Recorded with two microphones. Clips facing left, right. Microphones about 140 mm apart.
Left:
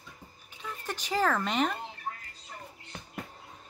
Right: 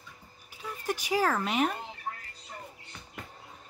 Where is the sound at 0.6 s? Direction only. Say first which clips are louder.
Right 4 dB; 10° right (ahead or behind).